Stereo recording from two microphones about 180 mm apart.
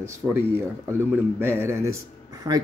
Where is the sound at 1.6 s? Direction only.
15° right (ahead or behind).